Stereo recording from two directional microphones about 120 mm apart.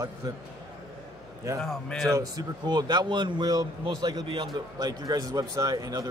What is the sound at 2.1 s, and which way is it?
A man's voice, 35° right (ahead or behind).